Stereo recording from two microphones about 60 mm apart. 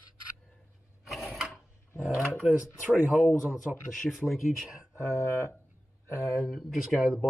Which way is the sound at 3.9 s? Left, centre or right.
Centre.